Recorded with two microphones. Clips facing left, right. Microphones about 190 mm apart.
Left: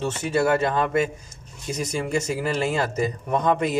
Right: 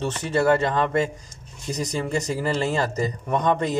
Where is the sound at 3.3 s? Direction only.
5° left (ahead or behind).